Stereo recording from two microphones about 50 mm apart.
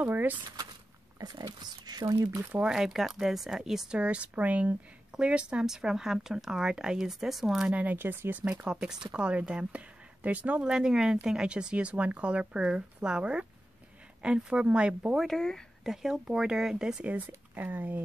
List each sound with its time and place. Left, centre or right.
0.1 s speech: right
2.6 s speech: centre
4.0 s speech: right
5.2 s speech: right
7.1 s speech: centre
7.6 s speech: right
8.4 s speech: right
8.6 s speech: centre
10.6 s speech: centre
15.3 s speech: centre
15.8 s speech: centre
17.6 s speech: right